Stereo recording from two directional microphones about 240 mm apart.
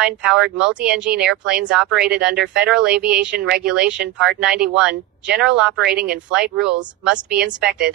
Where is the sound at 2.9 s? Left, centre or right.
Right.